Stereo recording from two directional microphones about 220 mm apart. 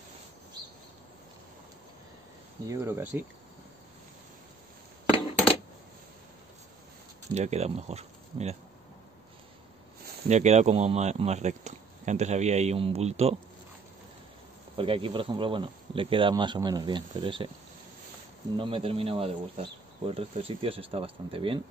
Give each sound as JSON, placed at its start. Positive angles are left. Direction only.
{"t": 2.6, "sound": "speech", "side_deg": -10}
{"t": 7.3, "sound": "speech", "side_deg": -30}
{"t": 10.2, "sound": "speech", "side_deg": -30}
{"t": 14.8, "sound": "speech", "side_deg": -25}
{"t": 18.6, "sound": "speech", "side_deg": -25}